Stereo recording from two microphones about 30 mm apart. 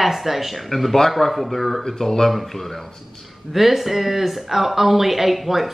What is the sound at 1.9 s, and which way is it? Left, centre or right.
Speech, centre.